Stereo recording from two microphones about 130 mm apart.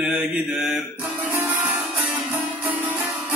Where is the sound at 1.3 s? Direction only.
20° right (ahead or behind).